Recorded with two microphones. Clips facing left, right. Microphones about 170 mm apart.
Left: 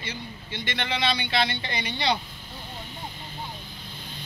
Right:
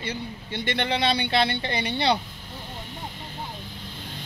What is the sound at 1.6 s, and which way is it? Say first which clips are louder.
Speech: right 5 dB; 55° right (ahead or behind).